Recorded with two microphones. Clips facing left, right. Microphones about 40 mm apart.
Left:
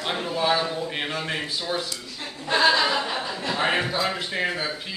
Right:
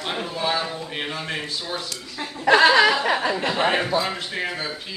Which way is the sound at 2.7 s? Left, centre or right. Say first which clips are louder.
Right 5 dB; right.